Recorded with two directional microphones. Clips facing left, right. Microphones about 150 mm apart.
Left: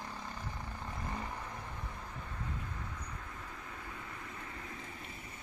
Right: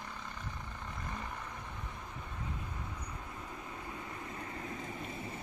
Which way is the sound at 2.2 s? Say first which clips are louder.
Right 1 dB; 15° right (ahead or behind).